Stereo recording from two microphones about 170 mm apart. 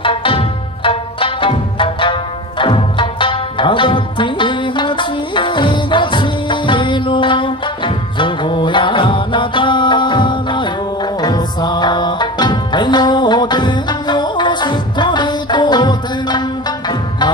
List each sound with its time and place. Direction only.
0.0 s music: 30° left (ahead or behind)